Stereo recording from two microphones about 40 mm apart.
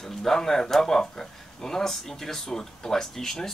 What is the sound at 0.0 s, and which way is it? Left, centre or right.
Speech, centre.